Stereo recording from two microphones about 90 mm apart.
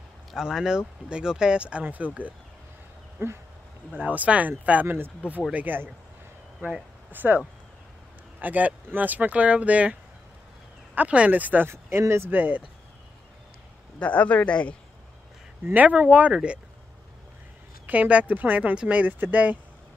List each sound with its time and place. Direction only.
0.3 s speech: 5° right (ahead or behind)
3.2 s speech: 30° right (ahead or behind)
3.9 s speech: 15° right (ahead or behind)
11.0 s speech: 15° right (ahead or behind)
13.9 s speech: 15° left (ahead or behind)
15.6 s speech: 15° right (ahead or behind)
17.8 s speech: 15° right (ahead or behind)